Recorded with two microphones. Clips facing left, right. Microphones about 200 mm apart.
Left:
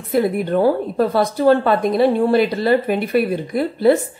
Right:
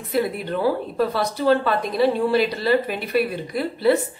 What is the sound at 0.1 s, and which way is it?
A woman's voice, 50° left (ahead or behind).